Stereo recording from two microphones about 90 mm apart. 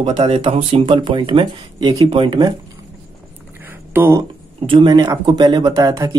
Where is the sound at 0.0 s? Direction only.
70° right (ahead or behind).